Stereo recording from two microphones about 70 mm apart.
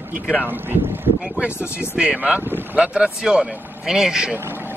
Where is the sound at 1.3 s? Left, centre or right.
Centre.